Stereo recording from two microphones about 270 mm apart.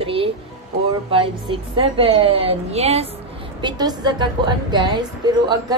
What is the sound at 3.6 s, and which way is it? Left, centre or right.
A woman's voice, centre.